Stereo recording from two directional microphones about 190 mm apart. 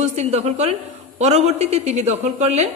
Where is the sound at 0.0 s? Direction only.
35° right (ahead or behind).